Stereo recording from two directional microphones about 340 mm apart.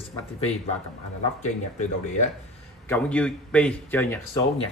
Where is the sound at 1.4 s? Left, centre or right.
Left.